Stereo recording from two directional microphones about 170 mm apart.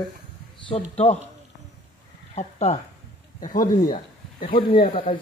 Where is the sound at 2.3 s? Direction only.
40° left (ahead or behind).